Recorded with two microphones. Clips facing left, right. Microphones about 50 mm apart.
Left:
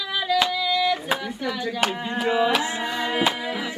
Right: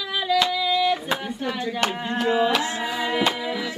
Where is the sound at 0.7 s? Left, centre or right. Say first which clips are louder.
Right 1 dB; right.